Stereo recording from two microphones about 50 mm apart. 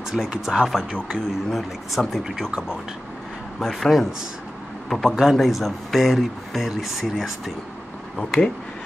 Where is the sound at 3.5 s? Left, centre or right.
Centre.